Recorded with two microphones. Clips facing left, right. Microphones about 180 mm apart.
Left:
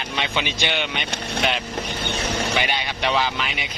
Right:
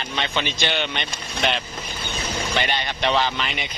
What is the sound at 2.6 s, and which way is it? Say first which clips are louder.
Speech: even; 5° left (ahead or behind).